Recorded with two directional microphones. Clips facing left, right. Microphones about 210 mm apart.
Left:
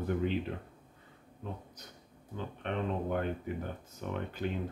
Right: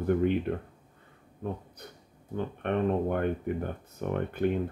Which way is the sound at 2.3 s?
55° right (ahead or behind).